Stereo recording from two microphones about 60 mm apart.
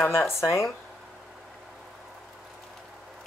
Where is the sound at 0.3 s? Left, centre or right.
Left.